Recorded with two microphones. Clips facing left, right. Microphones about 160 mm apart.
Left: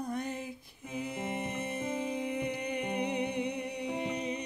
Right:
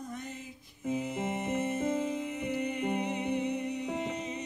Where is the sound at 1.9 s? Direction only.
60° left (ahead or behind).